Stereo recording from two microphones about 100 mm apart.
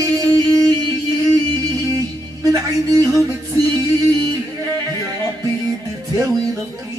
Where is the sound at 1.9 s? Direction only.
35° right (ahead or behind).